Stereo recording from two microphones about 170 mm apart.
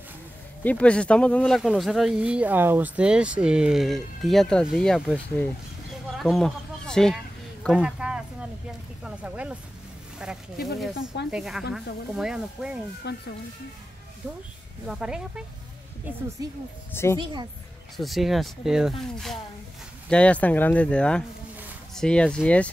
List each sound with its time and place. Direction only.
0.7 s speech: 5° left (ahead or behind)
13.0 s speech: 80° left
14.2 s speech: 5° right (ahead or behind)
16.4 s speech: 20° right (ahead or behind)
16.9 s speech: 15° left (ahead or behind)
17.2 s speech: 25° right (ahead or behind)
17.9 s speech: centre (ahead or behind)